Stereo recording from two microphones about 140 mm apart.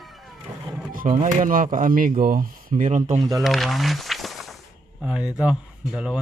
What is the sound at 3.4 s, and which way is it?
A man's voice, centre (ahead or behind).